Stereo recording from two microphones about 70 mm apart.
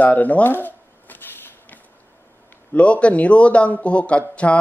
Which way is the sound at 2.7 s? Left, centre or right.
Centre.